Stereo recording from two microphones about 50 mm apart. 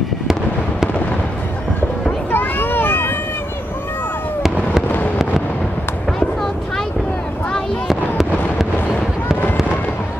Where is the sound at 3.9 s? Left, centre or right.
Left.